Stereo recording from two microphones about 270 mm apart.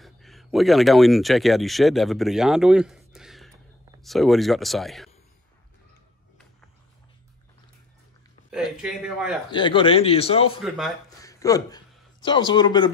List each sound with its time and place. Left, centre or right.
0.0 s speech: centre
8.5 s speech: centre
9.5 s a man's voice: centre